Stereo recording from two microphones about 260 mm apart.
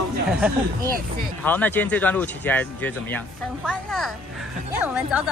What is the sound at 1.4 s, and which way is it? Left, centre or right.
Speech, centre.